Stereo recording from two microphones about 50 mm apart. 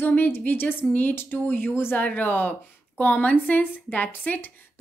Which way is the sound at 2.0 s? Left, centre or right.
Left.